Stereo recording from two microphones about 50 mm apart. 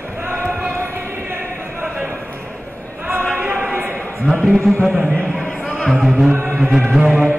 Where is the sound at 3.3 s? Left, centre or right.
Right.